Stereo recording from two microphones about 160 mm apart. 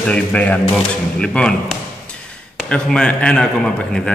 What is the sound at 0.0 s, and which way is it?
A man's voice, 5° left (ahead or behind).